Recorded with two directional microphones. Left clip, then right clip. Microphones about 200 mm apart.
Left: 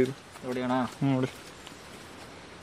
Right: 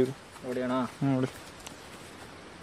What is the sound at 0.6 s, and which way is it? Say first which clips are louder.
Speech: left 1 dB; 55° left (ahead or behind).